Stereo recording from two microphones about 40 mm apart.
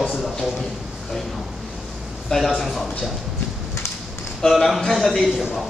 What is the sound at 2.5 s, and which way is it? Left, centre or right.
Speech, centre.